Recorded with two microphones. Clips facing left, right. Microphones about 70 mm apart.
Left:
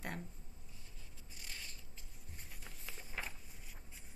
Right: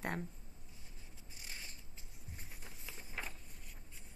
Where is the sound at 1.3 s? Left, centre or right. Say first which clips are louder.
Even; right.